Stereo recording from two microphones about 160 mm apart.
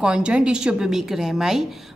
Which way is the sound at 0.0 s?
5° right (ahead or behind).